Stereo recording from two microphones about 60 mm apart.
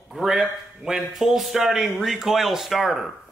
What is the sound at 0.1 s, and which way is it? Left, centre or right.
A man's voice, centre.